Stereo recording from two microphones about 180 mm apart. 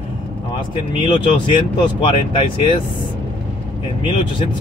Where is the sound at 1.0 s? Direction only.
30° left (ahead or behind).